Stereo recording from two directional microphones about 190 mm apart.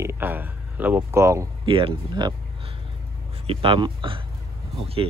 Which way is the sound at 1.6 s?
25° right (ahead or behind).